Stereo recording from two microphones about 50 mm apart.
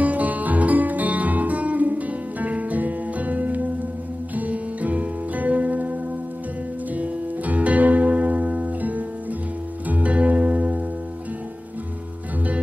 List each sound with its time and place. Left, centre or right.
0.0 s music: right